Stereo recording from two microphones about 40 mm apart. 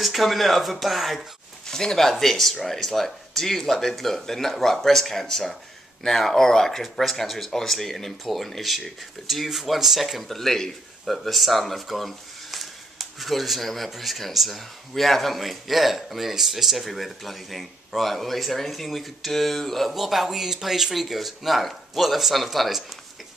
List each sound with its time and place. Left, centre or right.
0.0 s speech: centre
1.7 s speech: centre